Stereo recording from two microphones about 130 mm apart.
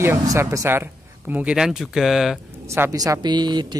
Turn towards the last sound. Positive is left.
turn(degrees=-35)  # may be behind; listen again after turning